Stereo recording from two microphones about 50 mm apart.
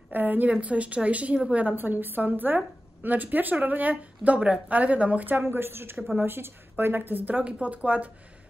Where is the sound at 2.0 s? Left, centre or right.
Right.